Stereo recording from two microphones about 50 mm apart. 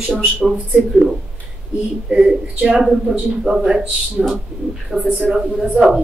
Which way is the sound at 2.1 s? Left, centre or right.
Centre.